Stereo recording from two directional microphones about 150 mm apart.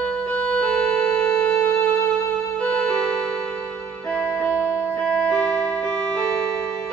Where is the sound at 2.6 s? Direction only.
5° left (ahead or behind).